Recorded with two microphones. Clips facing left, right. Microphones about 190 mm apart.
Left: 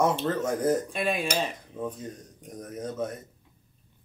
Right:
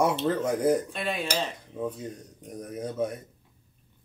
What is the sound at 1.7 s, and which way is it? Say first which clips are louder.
Speech: right 2 dB; 10° right (ahead or behind).